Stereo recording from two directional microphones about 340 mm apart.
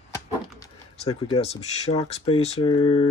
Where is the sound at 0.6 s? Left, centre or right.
Centre.